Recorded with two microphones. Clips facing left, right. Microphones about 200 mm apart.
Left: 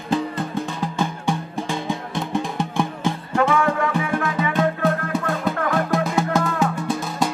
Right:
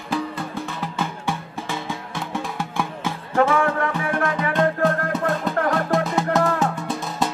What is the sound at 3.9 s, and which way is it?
Music, 5° left (ahead or behind).